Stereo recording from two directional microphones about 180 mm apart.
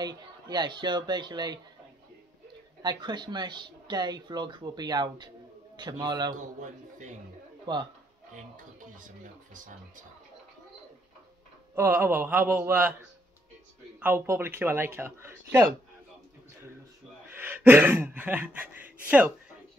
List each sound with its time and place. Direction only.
0.0 s speech: 25° right (ahead or behind)
2.8 s speech: 25° right (ahead or behind)
6.3 s a man's voice: 45° right (ahead or behind)
7.7 s speech: 25° right (ahead or behind)
8.3 s speech: 45° right (ahead or behind)
11.7 s speech: 15° right (ahead or behind)
13.9 s speech: 15° right (ahead or behind)
17.4 s speech: 10° right (ahead or behind)